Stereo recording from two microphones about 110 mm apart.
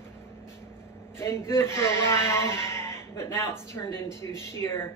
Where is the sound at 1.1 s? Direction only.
25° left (ahead or behind).